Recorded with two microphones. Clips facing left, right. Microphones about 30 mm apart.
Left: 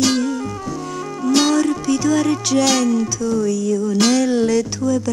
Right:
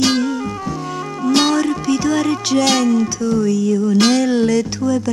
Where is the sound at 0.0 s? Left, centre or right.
Centre.